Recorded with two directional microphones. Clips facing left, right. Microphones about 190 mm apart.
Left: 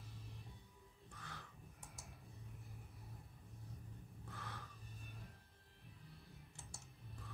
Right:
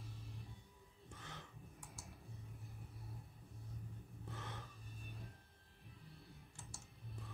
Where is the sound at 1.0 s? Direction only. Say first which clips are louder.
Right 1 dB; 25° right (ahead or behind).